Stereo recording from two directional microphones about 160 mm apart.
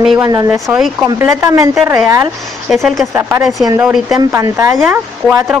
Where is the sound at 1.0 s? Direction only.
20° right (ahead or behind).